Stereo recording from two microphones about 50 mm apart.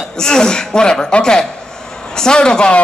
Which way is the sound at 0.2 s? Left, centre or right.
Centre.